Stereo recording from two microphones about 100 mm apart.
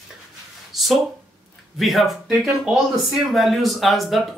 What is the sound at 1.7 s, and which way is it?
Speech, centre (ahead or behind).